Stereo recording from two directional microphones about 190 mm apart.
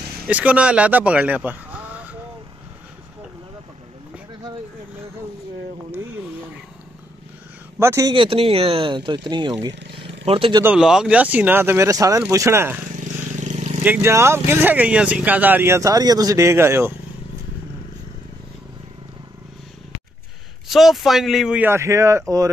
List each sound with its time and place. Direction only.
0.3 s speech: 5° right (ahead or behind)
7.8 s speech: 15° right (ahead or behind)
8.1 s speech: 25° right (ahead or behind)
10.6 s speech: 5° right (ahead or behind)
13.0 s vehicle: 40° right (ahead or behind)
13.8 s speech: 15° right (ahead or behind)
20.6 s speech: centre (ahead or behind)